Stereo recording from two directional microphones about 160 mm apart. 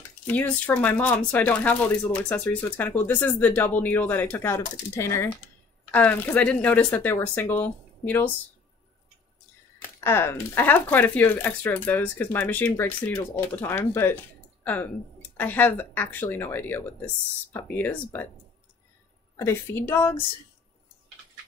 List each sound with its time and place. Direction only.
0.3 s speech: 10° left (ahead or behind)
9.9 s speech: 15° left (ahead or behind)
19.3 s speech: 15° left (ahead or behind)